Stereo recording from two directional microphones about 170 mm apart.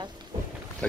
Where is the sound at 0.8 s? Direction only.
5° left (ahead or behind).